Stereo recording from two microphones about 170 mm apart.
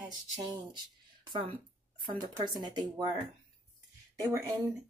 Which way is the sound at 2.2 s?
25° right (ahead or behind).